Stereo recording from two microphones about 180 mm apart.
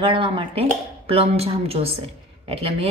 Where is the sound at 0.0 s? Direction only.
30° right (ahead or behind).